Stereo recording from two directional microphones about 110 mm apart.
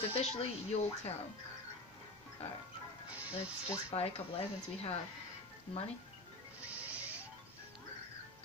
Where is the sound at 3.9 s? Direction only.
65° left (ahead or behind).